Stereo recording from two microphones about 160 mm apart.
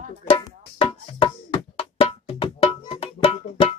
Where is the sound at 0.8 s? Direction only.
35° left (ahead or behind).